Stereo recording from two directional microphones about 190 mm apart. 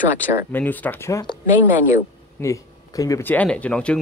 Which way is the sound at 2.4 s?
15° left (ahead or behind).